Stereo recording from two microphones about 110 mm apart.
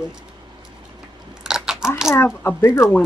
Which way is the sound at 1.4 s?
5° right (ahead or behind).